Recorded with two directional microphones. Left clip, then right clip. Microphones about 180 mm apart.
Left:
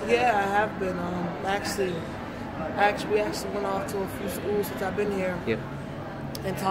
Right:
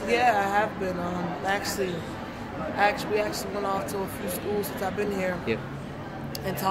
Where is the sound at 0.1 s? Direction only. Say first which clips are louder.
Even; 20° right (ahead or behind).